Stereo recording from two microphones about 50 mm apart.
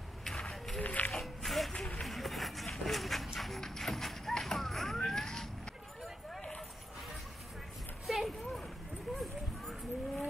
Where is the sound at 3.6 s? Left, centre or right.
Centre.